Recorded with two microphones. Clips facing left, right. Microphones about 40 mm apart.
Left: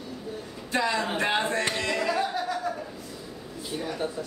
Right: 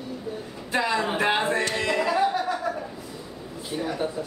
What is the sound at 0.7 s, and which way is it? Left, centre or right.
Speech, centre.